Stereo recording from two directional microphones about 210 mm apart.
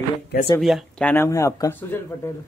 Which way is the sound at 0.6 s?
Centre (ahead or behind).